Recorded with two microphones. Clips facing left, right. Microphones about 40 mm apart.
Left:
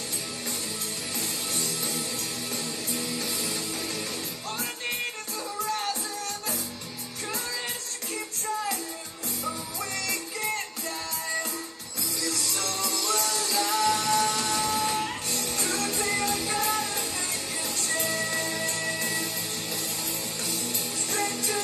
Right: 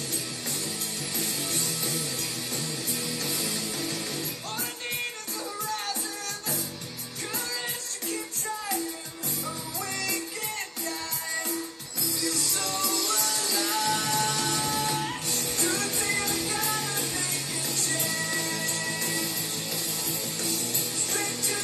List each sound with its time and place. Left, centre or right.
13.5 s music: left
18.3 s music: left
21.1 s music: left